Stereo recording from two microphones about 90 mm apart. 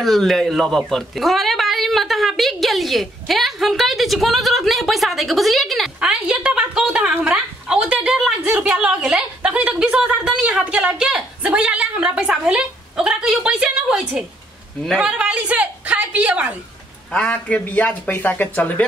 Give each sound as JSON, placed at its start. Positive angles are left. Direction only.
{"t": 0.0, "sound": "a woman's voice", "side_deg": 0}
{"t": 5.9, "sound": "a woman's voice", "side_deg": -10}
{"t": 17.1, "sound": "speech", "side_deg": 15}